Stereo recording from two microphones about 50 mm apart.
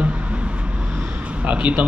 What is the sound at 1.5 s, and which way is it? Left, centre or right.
Speech, right.